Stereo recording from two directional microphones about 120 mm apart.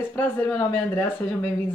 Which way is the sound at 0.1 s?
15° left (ahead or behind).